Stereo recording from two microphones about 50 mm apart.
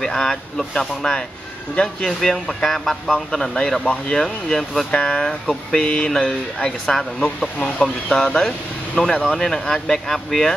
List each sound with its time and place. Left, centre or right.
0.0 s speech: centre
3.8 s mantra: left
4.2 s speech: centre
4.9 s mantra: centre
6.1 s speech: centre